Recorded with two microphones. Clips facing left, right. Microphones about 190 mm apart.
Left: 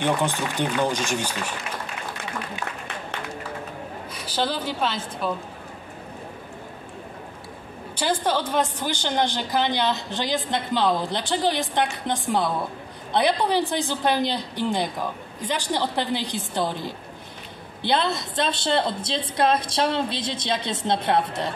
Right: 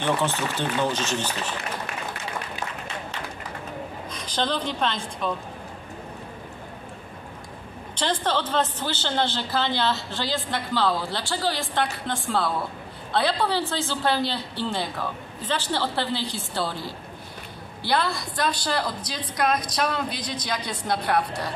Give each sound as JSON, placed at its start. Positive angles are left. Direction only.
{"t": 0.0, "sound": "a woman's voice", "side_deg": 15}
{"t": 4.1, "sound": "a woman's voice", "side_deg": 10}
{"t": 7.9, "sound": "a woman's voice", "side_deg": 10}